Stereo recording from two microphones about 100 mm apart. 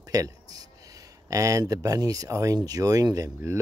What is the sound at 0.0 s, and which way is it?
Speech, 35° right (ahead or behind).